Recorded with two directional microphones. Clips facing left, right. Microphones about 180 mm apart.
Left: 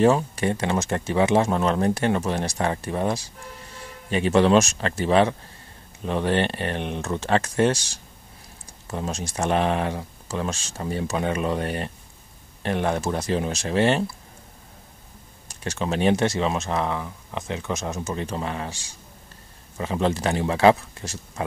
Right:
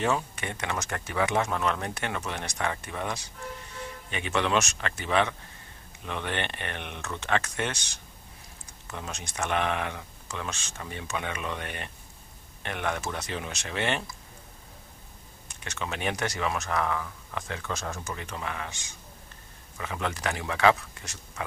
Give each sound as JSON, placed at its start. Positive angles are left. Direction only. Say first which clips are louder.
{"t": 0.0, "sound": "speech", "louder": "left 9 dB", "side_deg": 35}
{"t": 15.6, "sound": "speech", "louder": "left 10 dB", "side_deg": 35}